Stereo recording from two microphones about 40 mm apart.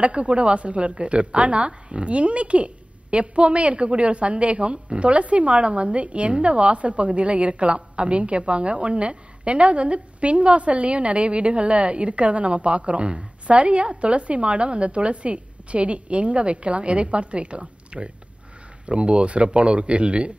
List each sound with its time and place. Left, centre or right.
0.0 s a woman's voice: right